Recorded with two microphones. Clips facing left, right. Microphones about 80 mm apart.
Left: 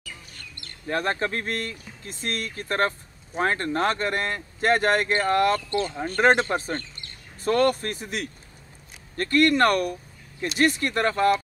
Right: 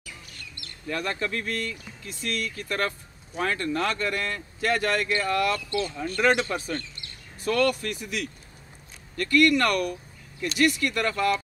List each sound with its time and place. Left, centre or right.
0.6 s speech: left